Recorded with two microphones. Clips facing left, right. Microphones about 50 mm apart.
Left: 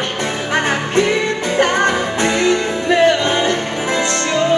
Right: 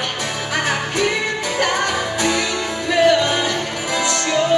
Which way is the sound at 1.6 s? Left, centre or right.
Left.